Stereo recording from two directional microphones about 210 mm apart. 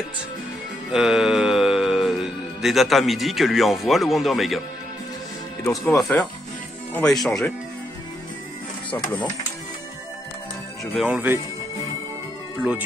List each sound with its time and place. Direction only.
0.9 s speech: centre (ahead or behind)
5.6 s speech: 10° left (ahead or behind)
5.9 s speech: centre (ahead or behind)
11.1 s speech: 5° right (ahead or behind)